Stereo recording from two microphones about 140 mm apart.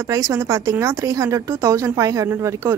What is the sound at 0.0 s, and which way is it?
Speech, 20° right (ahead or behind).